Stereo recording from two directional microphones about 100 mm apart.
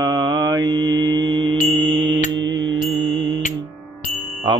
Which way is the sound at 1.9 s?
45° right (ahead or behind).